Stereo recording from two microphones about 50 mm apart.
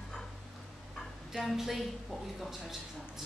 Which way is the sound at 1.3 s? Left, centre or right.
Centre.